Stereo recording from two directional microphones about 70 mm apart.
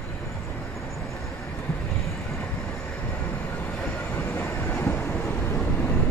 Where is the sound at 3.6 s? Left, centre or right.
Left.